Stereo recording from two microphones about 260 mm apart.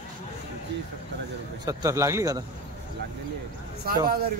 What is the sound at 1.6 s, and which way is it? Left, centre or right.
Speech, centre.